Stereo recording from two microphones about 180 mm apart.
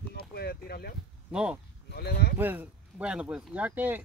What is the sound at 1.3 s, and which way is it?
Speech, 5° right (ahead or behind).